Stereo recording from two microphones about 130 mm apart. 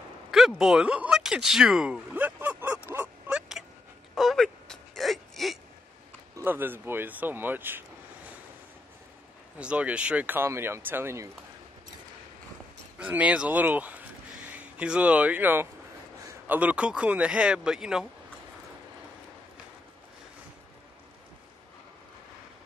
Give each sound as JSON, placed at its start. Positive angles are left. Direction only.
{"t": 0.3, "sound": "a sound", "side_deg": -5}
{"t": 6.3, "sound": "a man's voice", "side_deg": -15}
{"t": 9.6, "sound": "a man's voice", "side_deg": -10}
{"t": 13.0, "sound": "a man's voice", "side_deg": -10}